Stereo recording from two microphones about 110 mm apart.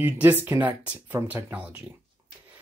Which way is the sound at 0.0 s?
15° right (ahead or behind).